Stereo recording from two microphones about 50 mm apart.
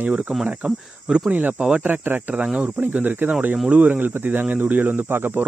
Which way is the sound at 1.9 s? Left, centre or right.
Right.